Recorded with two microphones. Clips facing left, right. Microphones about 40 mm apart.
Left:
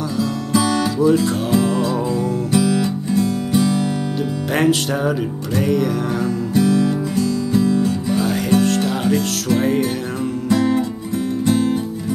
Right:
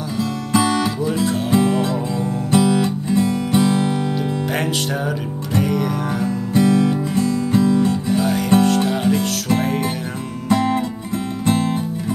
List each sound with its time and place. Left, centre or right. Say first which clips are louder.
0.5 s music: right 1 dB; right
1.0 s speech: left 4 dB; centre
1.5 s music: right 1 dB; right
4.6 s music: left 4 dB; centre
6.5 s music: right 1 dB; right
8.1 s music: even; centre
10.5 s music: even; right